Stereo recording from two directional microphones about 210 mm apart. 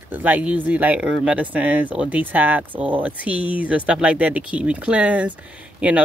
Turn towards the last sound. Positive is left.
turn(degrees=-5)  # may be behind; listen again after turning